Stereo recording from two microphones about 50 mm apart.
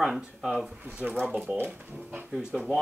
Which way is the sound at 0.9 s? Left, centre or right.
Right.